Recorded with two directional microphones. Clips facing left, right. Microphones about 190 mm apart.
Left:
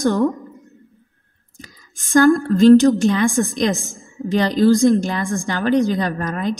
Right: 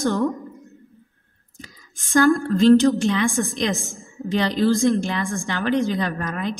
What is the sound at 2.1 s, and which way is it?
A woman's voice, 35° left (ahead or behind).